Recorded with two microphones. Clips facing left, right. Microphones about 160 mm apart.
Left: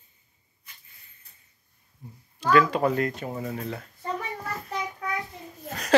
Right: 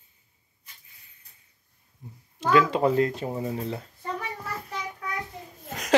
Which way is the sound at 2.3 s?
20° right (ahead or behind).